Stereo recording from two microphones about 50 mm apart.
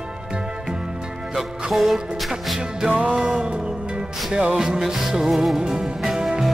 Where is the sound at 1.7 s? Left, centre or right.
Centre.